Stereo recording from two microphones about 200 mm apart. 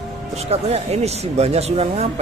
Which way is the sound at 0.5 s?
30° right (ahead or behind).